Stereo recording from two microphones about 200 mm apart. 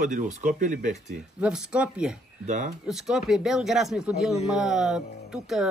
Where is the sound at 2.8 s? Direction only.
Centre (ahead or behind).